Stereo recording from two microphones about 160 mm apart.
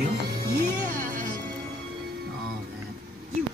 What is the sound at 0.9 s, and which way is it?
Music, 60° right (ahead or behind).